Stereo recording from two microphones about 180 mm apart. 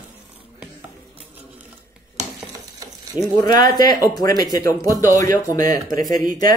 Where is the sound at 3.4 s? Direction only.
20° left (ahead or behind).